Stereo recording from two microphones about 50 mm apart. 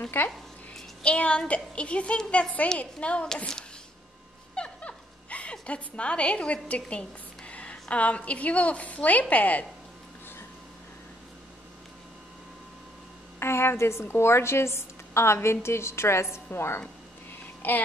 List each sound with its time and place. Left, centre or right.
0.2 s speech: left
1.0 s music: left
4.6 s a woman's voice: left
13.4 s a woman's voice: left
17.6 s a sound: left